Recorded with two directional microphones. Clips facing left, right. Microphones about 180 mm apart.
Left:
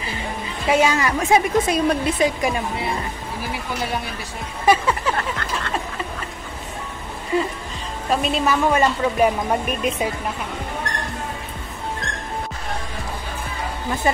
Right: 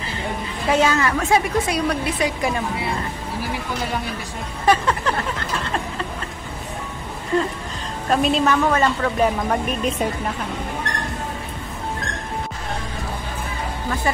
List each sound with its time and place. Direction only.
0.7 s speech: 10° left (ahead or behind)
4.6 s a sound: 10° left (ahead or behind)
7.3 s speech: 10° left (ahead or behind)
14.0 s speech: 20° left (ahead or behind)